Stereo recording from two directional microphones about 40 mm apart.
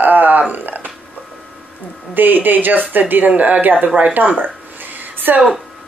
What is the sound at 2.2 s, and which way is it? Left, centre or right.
Speech, right.